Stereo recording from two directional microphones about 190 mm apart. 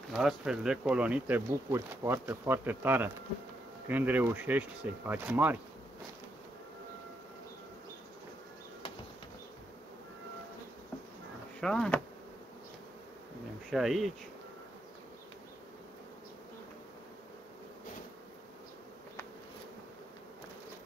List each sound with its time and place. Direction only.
0.1 s speech: centre (ahead or behind)
11.6 s speech: 5° left (ahead or behind)
13.7 s speech: centre (ahead or behind)